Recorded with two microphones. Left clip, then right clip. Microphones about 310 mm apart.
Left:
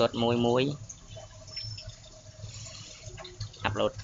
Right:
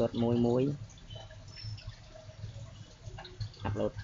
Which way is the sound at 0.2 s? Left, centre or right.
Left.